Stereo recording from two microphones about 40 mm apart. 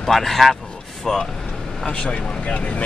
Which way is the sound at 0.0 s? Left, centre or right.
Centre.